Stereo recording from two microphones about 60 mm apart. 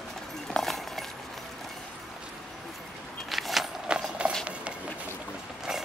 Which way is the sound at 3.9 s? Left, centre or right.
Centre.